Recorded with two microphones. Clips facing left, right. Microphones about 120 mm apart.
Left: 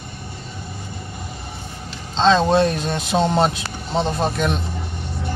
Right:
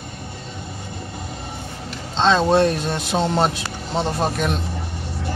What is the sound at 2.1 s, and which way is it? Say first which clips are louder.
Speech: left 1 dB; centre (ahead or behind).